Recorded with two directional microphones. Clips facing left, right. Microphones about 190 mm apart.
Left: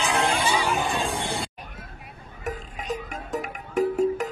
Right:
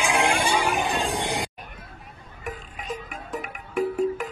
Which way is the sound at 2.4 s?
40° left (ahead or behind).